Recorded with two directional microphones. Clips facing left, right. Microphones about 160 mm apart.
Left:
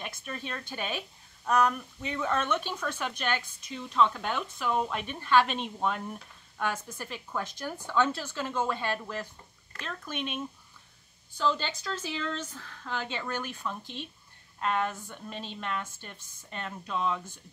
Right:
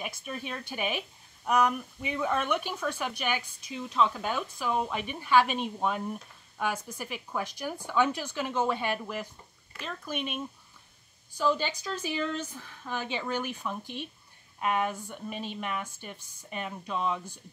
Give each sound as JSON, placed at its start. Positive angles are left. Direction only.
{"t": 0.0, "sound": "a woman's voice", "side_deg": -10}